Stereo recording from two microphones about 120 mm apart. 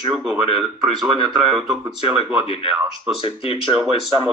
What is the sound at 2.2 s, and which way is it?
Speech, 45° left (ahead or behind).